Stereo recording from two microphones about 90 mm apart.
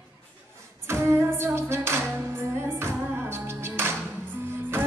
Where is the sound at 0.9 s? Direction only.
30° right (ahead or behind).